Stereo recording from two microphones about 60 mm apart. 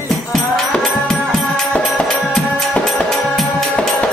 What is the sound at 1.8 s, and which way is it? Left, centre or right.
Music, centre.